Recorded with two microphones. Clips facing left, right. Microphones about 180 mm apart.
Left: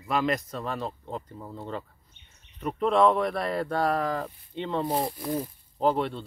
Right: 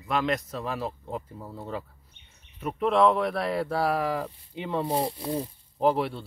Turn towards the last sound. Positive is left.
turn(degrees=-5)  # may be behind; listen again after turning